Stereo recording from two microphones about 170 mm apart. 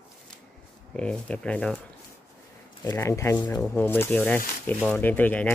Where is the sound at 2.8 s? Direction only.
20° left (ahead or behind).